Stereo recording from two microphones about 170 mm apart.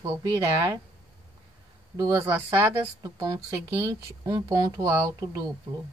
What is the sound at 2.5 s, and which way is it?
Speech, 20° right (ahead or behind).